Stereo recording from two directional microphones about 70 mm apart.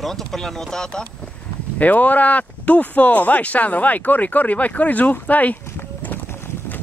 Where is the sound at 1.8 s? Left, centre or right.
Left.